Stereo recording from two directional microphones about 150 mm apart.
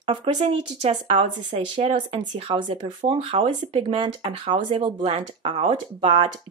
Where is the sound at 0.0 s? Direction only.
35° right (ahead or behind).